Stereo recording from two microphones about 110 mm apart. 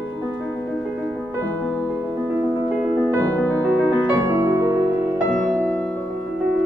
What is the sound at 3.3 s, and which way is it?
Music, 10° left (ahead or behind).